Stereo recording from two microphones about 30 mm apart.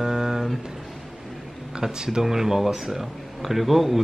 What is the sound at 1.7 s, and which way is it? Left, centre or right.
Speech, right.